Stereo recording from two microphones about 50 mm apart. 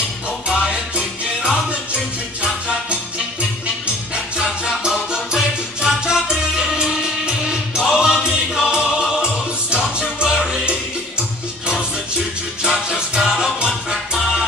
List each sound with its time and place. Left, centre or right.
0.5 s music: centre
3.8 s music: centre
12.9 s music: centre